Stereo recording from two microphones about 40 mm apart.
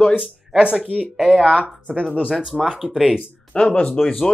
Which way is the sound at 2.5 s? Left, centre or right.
Centre.